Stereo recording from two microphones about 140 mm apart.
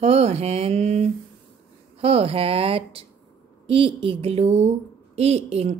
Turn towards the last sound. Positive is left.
turn(degrees=-50)  # may be behind; listen again after turning